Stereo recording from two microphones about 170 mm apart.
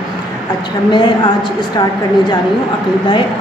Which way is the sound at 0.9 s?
25° left (ahead or behind).